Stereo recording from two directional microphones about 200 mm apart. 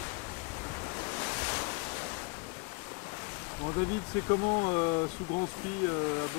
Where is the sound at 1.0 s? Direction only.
15° left (ahead or behind).